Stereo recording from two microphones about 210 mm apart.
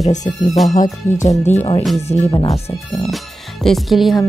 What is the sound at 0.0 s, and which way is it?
Speech, 35° left (ahead or behind).